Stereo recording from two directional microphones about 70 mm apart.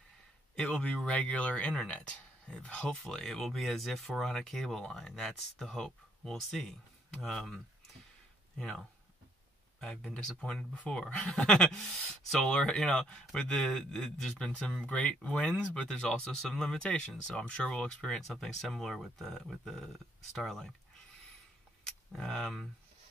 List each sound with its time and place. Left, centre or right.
0.6 s speech: centre
8.5 s speech: centre
21.8 s speech: centre